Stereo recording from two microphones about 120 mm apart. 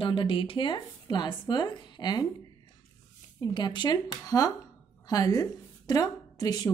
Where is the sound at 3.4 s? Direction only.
40° left (ahead or behind).